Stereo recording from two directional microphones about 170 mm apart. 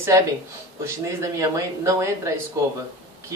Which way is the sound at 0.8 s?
15° right (ahead or behind).